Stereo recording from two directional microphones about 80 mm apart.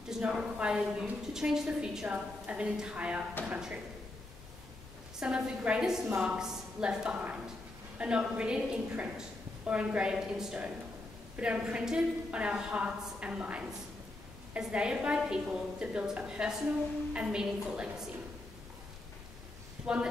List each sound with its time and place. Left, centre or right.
0.1 s a woman's voice: centre
5.2 s a woman's voice: centre
19.8 s a sound: centre